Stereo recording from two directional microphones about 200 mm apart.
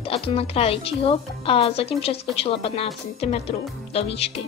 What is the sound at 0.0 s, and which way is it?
A woman's voice, 30° left (ahead or behind).